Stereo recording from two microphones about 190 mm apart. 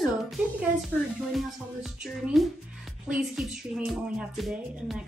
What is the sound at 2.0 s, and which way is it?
Speech, centre (ahead or behind).